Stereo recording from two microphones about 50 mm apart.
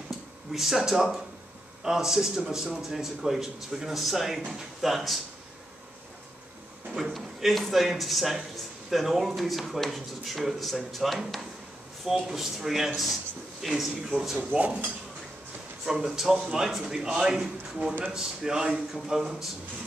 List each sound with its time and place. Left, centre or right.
0.5 s a man's voice: centre
6.9 s speech: centre
14.5 s speech: right
15.8 s a man's voice: centre